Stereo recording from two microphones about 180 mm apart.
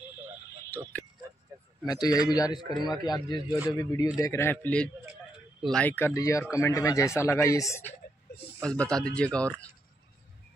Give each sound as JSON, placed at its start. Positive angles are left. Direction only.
{"t": 1.9, "sound": "a man's voice", "side_deg": 20}
{"t": 8.6, "sound": "speech", "side_deg": 5}